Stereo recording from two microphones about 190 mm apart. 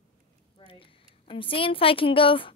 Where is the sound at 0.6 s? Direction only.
30° left (ahead or behind).